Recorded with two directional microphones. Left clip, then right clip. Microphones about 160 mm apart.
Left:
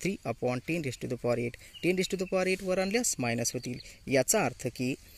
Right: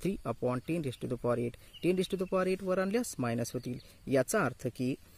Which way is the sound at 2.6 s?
15° left (ahead or behind).